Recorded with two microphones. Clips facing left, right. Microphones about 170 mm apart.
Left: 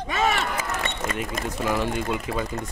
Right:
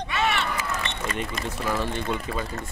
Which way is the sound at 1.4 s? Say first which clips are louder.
Left 3 dB; 15° left (ahead or behind).